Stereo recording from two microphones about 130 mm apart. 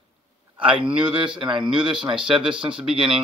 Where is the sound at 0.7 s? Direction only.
10° right (ahead or behind).